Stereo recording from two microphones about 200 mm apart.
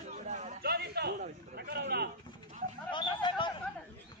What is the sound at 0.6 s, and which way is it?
A man's voice, 55° right (ahead or behind).